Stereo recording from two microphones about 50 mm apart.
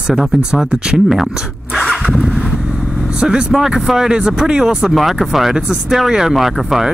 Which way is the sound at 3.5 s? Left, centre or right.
Centre.